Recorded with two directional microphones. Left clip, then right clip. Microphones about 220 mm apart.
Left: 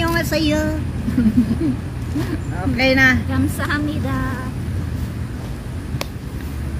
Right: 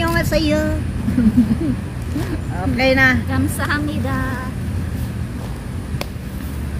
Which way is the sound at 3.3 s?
25° right (ahead or behind).